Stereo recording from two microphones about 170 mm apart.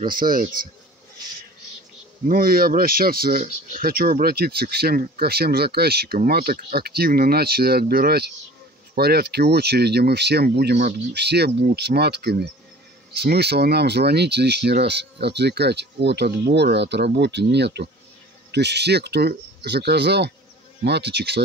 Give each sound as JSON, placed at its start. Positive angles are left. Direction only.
{"t": 0.1, "sound": "speech", "side_deg": -55}
{"t": 2.2, "sound": "speech", "side_deg": -55}